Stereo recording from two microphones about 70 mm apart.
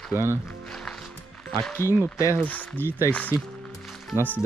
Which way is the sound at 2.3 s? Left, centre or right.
Left.